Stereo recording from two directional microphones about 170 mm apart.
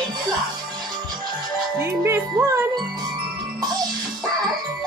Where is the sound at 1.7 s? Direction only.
15° right (ahead or behind).